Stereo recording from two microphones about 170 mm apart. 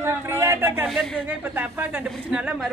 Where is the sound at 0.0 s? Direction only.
15° right (ahead or behind).